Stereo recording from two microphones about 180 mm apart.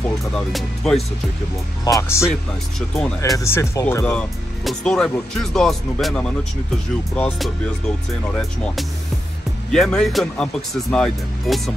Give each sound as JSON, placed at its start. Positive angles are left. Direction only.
{"t": 0.5, "sound": "speech", "side_deg": 0}
{"t": 2.0, "sound": "speech", "side_deg": 15}
{"t": 3.3, "sound": "speech", "side_deg": 15}
{"t": 9.7, "sound": "speech", "side_deg": 5}